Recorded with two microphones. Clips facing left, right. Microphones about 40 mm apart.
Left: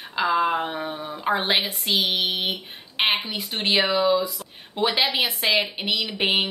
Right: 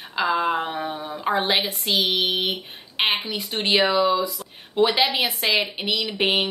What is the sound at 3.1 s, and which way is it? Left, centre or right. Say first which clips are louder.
Speech: even; left.